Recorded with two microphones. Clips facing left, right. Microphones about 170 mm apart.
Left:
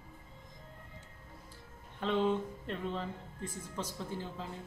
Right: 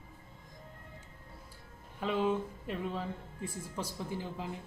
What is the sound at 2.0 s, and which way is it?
Music, 5° right (ahead or behind).